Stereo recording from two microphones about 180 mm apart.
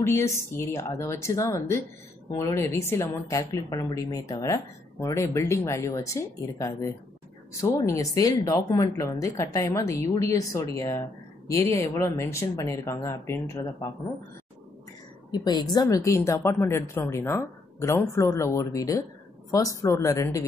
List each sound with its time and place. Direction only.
0.0 s a woman's voice: 15° left (ahead or behind)
15.3 s a woman's voice: 20° left (ahead or behind)